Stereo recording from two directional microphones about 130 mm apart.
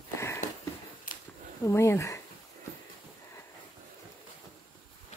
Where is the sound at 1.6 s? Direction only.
20° left (ahead or behind).